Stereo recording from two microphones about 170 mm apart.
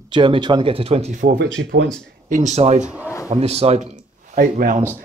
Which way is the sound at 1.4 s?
90° right.